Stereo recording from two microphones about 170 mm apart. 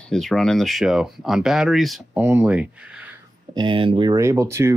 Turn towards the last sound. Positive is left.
turn(degrees=-15)  # may be behind; listen again after turning